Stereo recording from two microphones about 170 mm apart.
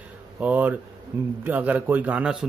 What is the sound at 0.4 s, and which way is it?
A man's voice, 10° right (ahead or behind).